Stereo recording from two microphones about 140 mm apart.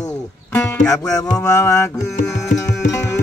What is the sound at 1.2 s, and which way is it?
Music, 20° left (ahead or behind).